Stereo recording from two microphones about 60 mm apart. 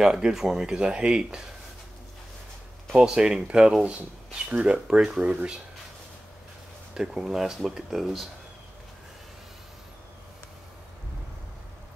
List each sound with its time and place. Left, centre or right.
0.0 s speech: centre
3.0 s speech: centre
6.9 s speech: centre